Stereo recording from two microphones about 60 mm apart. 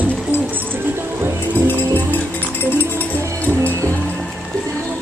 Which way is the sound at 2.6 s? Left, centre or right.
Left.